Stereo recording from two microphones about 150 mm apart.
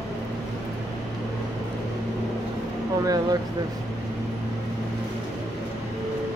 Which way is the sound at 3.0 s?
25° right (ahead or behind).